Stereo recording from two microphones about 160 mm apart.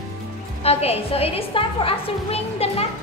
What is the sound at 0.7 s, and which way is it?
A woman's voice, 40° left (ahead or behind).